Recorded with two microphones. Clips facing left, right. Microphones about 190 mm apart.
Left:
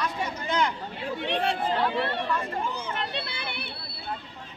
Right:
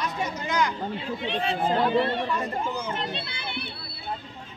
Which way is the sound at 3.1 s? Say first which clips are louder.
Left 1 dB; 60° left (ahead or behind).